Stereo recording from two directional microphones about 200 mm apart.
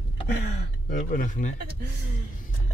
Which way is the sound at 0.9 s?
45° left (ahead or behind).